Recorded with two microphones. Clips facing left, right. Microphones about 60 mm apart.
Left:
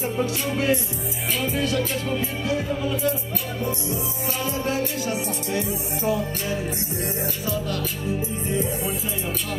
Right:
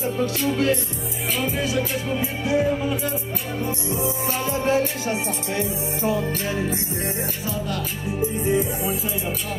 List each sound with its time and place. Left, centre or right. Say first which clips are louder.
1.4 s music: left 1 dB; centre
2.0 s music: right 1 dB; centre
4.5 s music: right 5 dB; right